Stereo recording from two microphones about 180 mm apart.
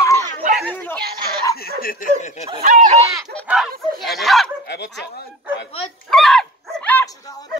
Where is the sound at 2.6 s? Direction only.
45° right (ahead or behind).